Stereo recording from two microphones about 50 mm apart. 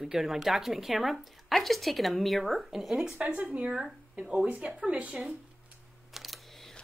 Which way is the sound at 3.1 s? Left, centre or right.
Centre.